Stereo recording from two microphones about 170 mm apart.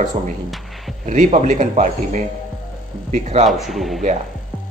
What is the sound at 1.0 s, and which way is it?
A man's voice, 50° right (ahead or behind).